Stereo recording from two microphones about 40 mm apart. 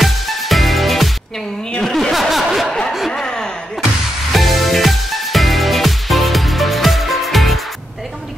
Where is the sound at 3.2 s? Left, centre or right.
Centre.